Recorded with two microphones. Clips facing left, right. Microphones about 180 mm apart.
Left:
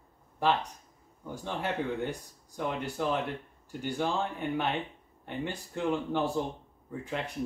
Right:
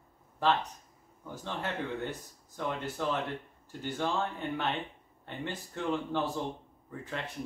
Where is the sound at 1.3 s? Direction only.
15° left (ahead or behind).